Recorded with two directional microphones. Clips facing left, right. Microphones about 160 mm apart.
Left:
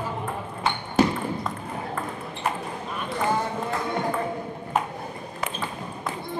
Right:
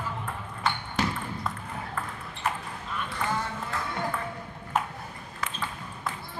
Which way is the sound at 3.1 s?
30° left (ahead or behind).